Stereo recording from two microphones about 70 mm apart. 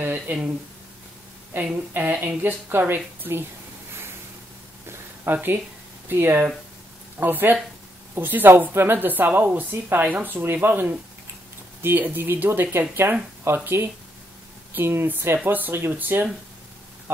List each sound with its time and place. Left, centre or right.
0.0 s speech: right
1.5 s a woman's voice: right
4.8 s a sound: right
6.0 s a woman's voice: right
14.8 s a woman's voice: right